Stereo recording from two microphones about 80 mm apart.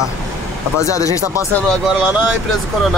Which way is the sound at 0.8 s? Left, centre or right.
Left.